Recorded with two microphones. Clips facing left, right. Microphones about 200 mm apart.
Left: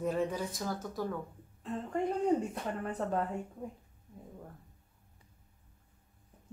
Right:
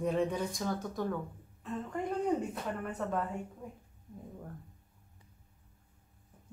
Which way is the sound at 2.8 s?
35° left (ahead or behind).